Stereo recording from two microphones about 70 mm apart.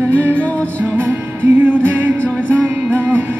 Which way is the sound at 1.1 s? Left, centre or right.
Right.